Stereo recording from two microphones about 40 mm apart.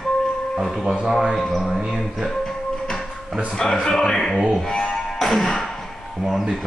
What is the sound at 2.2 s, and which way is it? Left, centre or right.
Music, centre.